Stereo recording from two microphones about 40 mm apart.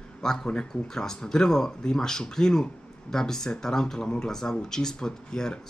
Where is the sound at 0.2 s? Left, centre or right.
Centre.